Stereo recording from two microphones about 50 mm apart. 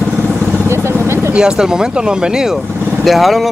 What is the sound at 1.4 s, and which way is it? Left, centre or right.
Speech, centre.